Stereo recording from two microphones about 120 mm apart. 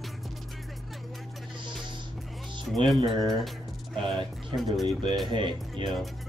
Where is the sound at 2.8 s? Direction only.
40° right (ahead or behind).